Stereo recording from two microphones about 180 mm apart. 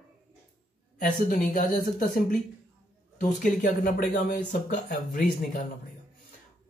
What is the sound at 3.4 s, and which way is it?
Speech, 45° left (ahead or behind).